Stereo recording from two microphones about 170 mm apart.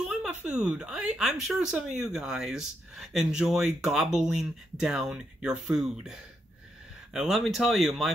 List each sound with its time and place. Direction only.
0.0 s speech: 5° right (ahead or behind)
7.2 s speech: centre (ahead or behind)